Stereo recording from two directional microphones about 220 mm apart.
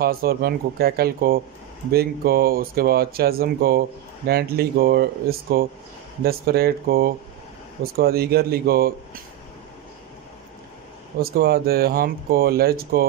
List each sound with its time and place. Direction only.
0.0 s speech: 45° right (ahead or behind)
11.1 s speech: 45° right (ahead or behind)